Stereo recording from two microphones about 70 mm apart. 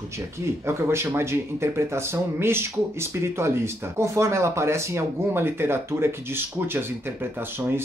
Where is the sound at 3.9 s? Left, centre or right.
Right.